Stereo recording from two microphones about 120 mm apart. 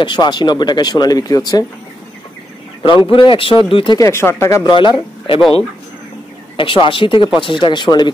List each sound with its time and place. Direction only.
0.0 s speech: 40° left (ahead or behind)
2.8 s speech: 45° left (ahead or behind)
4.0 s speech: 20° left (ahead or behind)
4.6 s speech: 40° left (ahead or behind)
6.5 s speech: 45° left (ahead or behind)